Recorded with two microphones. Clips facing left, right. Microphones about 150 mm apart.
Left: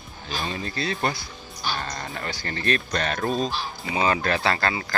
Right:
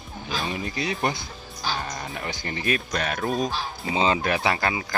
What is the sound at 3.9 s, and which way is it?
Speech, 20° right (ahead or behind).